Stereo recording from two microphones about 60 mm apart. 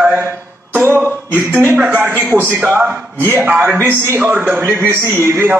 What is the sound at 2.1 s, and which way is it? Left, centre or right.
A man's voice, right.